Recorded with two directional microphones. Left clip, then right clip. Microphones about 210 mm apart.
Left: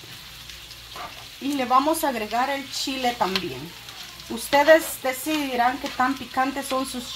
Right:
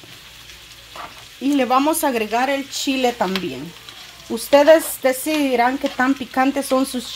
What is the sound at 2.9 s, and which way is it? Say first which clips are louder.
Speech: right 5 dB; 55° right (ahead or behind).